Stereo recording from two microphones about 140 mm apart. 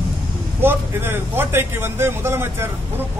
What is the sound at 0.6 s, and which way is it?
A man's voice, 15° right (ahead or behind).